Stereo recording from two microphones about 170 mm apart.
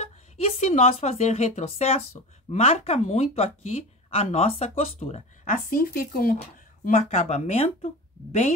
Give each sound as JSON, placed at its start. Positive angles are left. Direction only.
{"t": 0.0, "sound": "speech", "side_deg": 35}
{"t": 6.8, "sound": "speech", "side_deg": 40}